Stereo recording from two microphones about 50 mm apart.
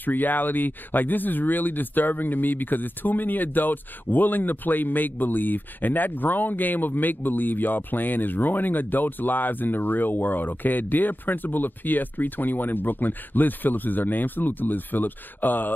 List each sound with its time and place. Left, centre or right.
0.0 s speech: left